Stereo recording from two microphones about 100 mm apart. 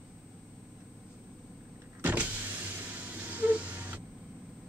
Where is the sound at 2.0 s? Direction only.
15° right (ahead or behind).